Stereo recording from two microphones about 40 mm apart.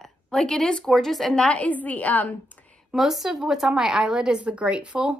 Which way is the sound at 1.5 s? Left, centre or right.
Left.